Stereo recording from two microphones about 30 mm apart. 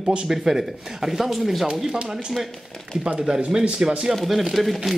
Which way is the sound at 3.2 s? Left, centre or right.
Right.